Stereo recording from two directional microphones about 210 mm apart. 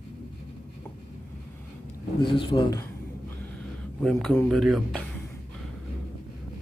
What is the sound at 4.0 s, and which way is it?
Speech, centre (ahead or behind).